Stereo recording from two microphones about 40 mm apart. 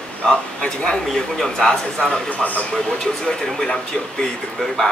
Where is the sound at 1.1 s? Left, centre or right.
Centre.